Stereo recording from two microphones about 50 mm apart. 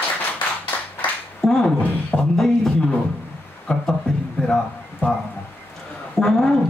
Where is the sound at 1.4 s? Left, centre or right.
Centre.